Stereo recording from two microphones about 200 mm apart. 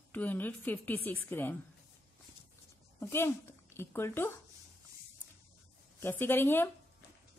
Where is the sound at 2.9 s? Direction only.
10° left (ahead or behind).